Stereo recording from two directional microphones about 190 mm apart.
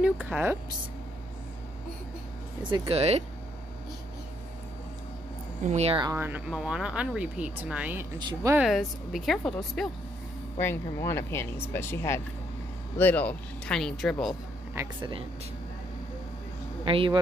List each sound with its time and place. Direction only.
0.0 s speech: 5° right (ahead or behind)
2.7 s speech: 30° right (ahead or behind)
5.7 s speech: 35° right (ahead or behind)
6.0 s speech: 10° right (ahead or behind)
8.2 s speech: 25° right (ahead or behind)
8.5 s speech: centre (ahead or behind)
10.6 s speech: 15° left (ahead or behind)
15.0 s speech: 25° right (ahead or behind)
16.8 s speech: 30° right (ahead or behind)